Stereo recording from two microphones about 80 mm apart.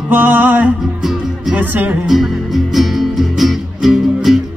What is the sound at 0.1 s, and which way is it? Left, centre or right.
Music, right.